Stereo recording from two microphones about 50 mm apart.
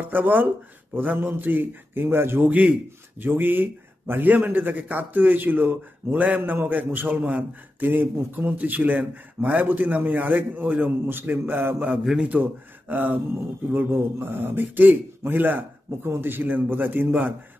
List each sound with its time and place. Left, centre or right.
0.0 s a man's voice: right
2.4 s a man's voice: right
3.2 s a man's voice: right
7.9 s a man's voice: right
11.1 s speech: right
11.9 s a man's voice: centre
12.4 s a man's voice: right
13.7 s a man's voice: right